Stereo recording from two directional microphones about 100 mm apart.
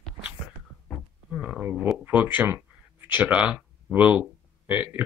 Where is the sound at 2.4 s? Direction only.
20° right (ahead or behind).